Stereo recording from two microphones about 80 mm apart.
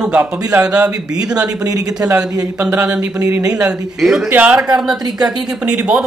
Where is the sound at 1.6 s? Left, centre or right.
Right.